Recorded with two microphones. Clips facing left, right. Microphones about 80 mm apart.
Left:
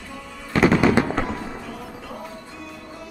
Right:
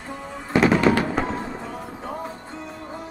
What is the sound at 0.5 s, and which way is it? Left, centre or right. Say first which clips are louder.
Fireworks: even; centre.